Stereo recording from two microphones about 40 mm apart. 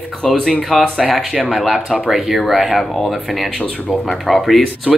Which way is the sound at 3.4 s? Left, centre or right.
Centre.